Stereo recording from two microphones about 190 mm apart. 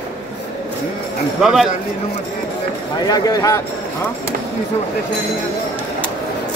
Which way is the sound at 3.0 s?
20° left (ahead or behind).